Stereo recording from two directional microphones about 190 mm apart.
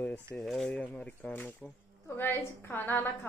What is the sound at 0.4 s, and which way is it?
A woman's voice, centre (ahead or behind).